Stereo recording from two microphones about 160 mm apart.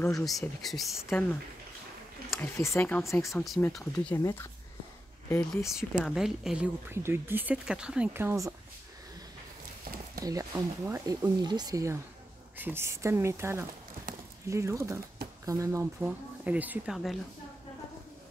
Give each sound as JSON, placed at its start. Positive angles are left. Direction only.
{"t": 0.0, "sound": "speech", "side_deg": 0}
{"t": 2.3, "sound": "speech", "side_deg": 15}
{"t": 3.2, "sound": "speech", "side_deg": 0}
{"t": 5.5, "sound": "speech", "side_deg": 0}
{"t": 10.2, "sound": "speech", "side_deg": -20}